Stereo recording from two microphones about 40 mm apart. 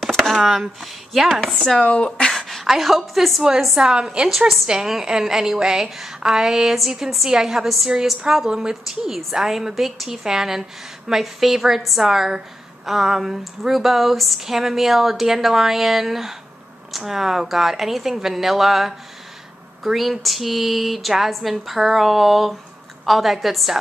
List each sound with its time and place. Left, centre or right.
0.1 s chopping: centre
0.4 s speech: centre
1.3 s speech: centre
1.8 s speech: left
2.3 s a woman's voice: centre
3.7 s a woman's voice: centre
4.3 s speech: centre
8.5 s a woman's voice: centre
8.8 s speech: centre
13.4 s speech: centre